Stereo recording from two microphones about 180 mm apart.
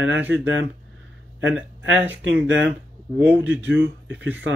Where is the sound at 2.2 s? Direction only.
90° right.